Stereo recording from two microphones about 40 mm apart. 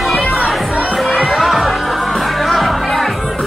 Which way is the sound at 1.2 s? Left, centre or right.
Centre.